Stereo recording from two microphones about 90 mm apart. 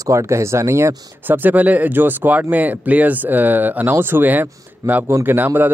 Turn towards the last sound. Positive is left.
turn(degrees=-20)  # may be behind; listen again after turning